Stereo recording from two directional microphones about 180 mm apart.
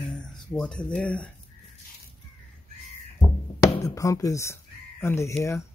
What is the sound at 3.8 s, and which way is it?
Speech, 15° left (ahead or behind).